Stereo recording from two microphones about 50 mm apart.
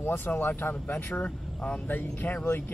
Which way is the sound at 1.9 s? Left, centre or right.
Left.